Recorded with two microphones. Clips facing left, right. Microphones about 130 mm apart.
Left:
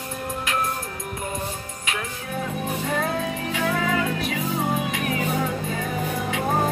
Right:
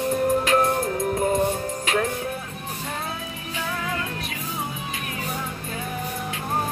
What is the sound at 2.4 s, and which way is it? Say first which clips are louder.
Music: left 7 dB; 90° left.